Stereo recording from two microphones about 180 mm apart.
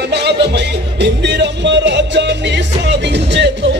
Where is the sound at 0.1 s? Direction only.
70° right (ahead or behind).